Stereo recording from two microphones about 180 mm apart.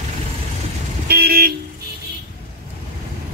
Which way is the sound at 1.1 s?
60° right (ahead or behind).